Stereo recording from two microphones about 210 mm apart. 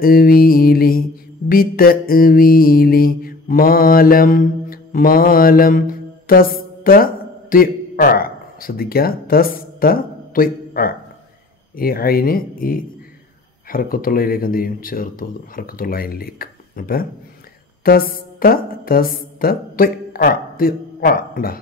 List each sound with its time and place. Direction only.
0.0 s speech: 45° left (ahead or behind)
1.5 s mantra: 45° left (ahead or behind)
6.8 s a man's voice: 45° left (ahead or behind)